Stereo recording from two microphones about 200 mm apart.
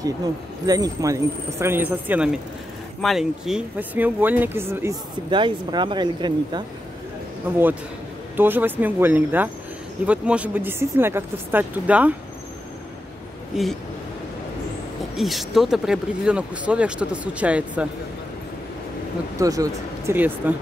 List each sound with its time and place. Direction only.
0.0 s speech: 20° right (ahead or behind)
5.3 s speech: 25° right (ahead or behind)
8.4 s speech: 10° right (ahead or behind)
15.1 s speech: centre (ahead or behind)
19.3 s speech: 15° right (ahead or behind)